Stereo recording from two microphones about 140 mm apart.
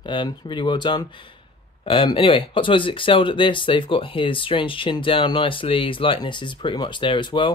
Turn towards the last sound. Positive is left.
turn(degrees=35)  # may be behind; listen again after turning